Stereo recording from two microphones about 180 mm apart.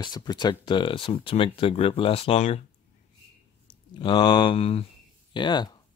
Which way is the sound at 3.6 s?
30° left (ahead or behind).